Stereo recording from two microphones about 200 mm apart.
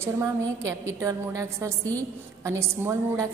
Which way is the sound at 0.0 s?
15° right (ahead or behind).